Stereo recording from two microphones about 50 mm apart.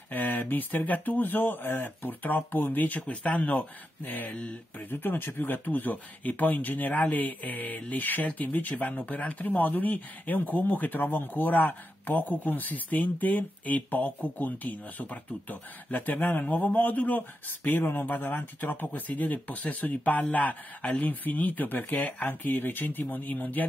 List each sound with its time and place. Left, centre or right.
0.1 s speech: left